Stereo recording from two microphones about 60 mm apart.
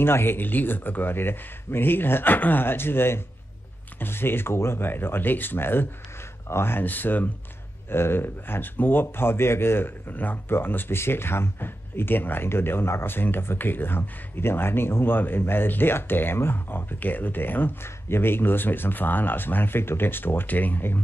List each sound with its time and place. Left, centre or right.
0.0 s speech: left